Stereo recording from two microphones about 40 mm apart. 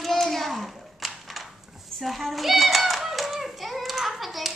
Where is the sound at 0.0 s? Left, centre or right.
Centre.